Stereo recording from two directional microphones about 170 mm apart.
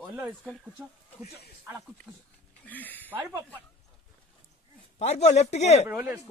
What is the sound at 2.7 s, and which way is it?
Speech, 10° left (ahead or behind).